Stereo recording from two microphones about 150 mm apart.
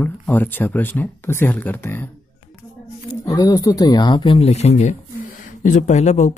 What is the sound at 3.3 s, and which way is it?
Speech, 25° left (ahead or behind).